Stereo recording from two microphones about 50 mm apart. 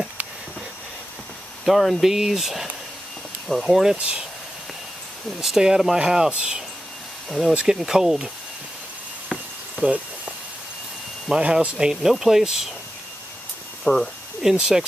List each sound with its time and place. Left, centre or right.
1.6 s speech: centre
5.4 s speech: centre
7.2 s speech: centre
7.5 s speech: centre
11.2 s speech: centre
11.9 s speech: centre
13.9 s speech: left
14.4 s speech: centre